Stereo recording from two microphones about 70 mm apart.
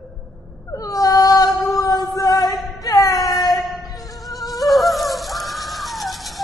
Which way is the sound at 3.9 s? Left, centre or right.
Left.